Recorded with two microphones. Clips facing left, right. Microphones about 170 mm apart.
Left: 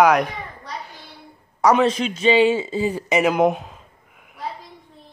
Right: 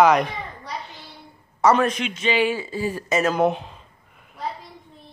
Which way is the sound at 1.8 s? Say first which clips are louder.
Left 5 dB; 35° left (ahead or behind).